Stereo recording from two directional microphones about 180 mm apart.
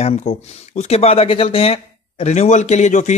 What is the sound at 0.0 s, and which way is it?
Speech, 35° left (ahead or behind).